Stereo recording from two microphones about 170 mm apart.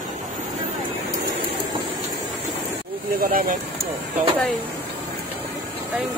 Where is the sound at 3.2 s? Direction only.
55° right (ahead or behind).